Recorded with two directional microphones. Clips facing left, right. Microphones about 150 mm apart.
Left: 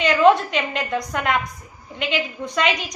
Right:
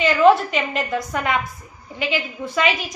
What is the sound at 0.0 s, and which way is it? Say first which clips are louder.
A woman's voice: right 1 dB; 5° right (ahead or behind).